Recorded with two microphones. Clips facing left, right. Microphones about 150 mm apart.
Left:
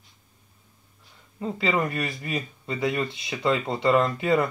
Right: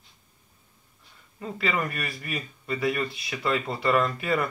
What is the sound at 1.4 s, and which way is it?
Speech, 25° left (ahead or behind).